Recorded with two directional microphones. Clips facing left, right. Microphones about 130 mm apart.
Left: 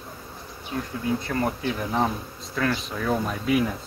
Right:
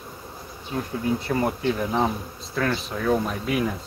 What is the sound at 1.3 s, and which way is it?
Bee, 5° right (ahead or behind).